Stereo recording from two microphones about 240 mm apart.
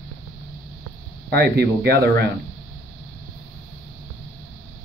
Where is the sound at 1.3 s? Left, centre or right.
Right.